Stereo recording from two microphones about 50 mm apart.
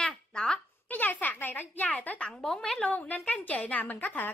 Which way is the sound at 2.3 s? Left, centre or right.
Centre.